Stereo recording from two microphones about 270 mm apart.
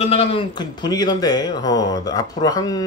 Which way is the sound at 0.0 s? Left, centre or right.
Left.